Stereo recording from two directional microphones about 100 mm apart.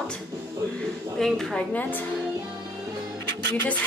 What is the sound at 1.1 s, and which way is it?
Speech, 5° left (ahead or behind).